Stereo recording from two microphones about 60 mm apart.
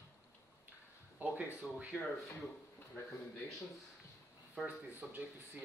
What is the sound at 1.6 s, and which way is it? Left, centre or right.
Speech, centre.